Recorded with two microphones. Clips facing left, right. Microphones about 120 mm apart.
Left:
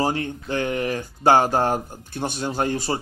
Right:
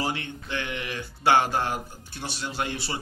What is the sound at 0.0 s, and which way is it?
Speech, 40° left (ahead or behind).